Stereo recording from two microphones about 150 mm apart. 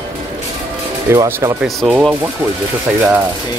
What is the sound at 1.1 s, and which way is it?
Speech, 20° right (ahead or behind).